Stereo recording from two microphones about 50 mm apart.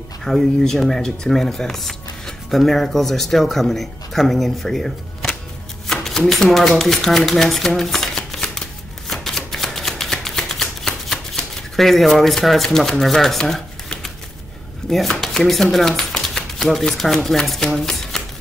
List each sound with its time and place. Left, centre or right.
0.2 s speech: centre
5.9 s shuffling cards: centre
6.8 s speech: centre
9.1 s shuffling cards: centre
12.6 s speech: centre
14.9 s speech: centre
16.0 s shuffling cards: centre